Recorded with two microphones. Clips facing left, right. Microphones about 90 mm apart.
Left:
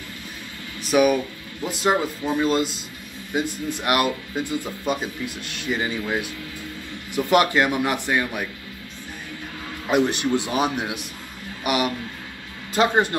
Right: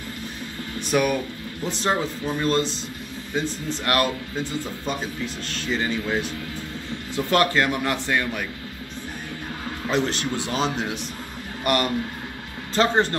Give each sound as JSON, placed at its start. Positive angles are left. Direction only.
{"t": 0.7, "sound": "speech", "side_deg": 5}
{"t": 9.8, "sound": "speech", "side_deg": 15}